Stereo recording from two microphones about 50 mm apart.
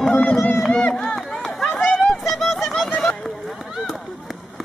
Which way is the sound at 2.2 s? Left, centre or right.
Centre.